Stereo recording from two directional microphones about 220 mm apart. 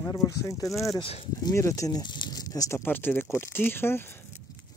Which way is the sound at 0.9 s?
25° left (ahead or behind).